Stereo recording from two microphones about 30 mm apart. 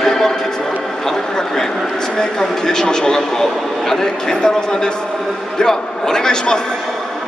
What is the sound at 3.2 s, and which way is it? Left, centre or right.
A woman's voice, centre.